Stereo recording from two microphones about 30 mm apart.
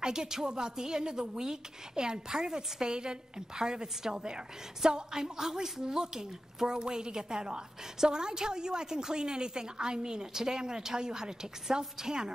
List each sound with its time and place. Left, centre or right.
0.0 s a woman's voice: right